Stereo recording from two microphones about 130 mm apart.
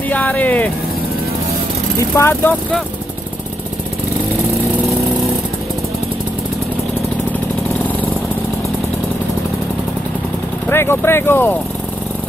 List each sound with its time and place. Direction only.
0.1 s vehicle: 10° left (ahead or behind)
2.0 s speech: 20° left (ahead or behind)
10.7 s speech: 20° left (ahead or behind)